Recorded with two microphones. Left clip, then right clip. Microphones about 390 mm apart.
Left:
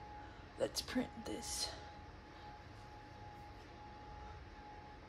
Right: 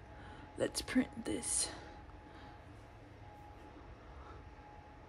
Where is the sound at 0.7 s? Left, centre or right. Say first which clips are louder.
Right 3 dB; centre.